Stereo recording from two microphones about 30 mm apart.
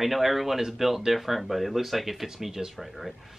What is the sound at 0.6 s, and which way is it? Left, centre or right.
Speech, centre.